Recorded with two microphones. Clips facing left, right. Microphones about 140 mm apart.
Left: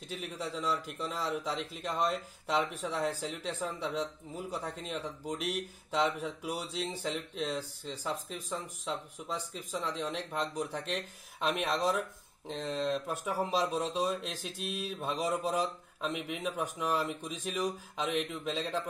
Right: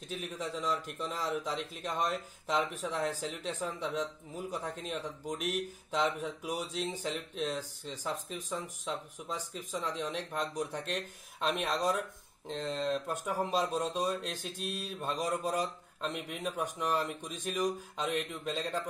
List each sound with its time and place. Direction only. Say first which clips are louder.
0.1 s a man's voice: even; centre (ahead or behind)